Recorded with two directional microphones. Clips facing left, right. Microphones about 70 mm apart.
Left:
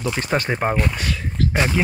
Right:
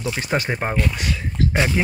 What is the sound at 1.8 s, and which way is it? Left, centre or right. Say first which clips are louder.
Speech: left 3 dB; centre.